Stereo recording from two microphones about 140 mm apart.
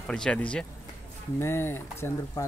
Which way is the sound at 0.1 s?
5° left (ahead or behind).